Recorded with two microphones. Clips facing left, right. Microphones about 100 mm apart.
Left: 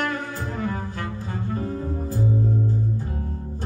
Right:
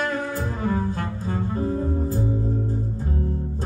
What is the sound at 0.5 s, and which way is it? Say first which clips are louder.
Double bass: right 4 dB; 30° right (ahead or behind).